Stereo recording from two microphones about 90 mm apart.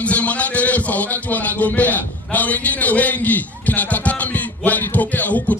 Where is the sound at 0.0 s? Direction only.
15° left (ahead or behind).